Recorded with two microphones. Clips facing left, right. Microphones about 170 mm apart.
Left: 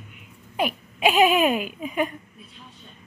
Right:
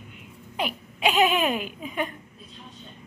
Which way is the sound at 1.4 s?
15° left (ahead or behind).